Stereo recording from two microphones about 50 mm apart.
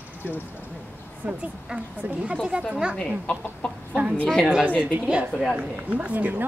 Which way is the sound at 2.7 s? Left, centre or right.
Centre.